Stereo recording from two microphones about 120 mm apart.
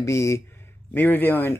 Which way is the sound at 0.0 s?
25° left (ahead or behind).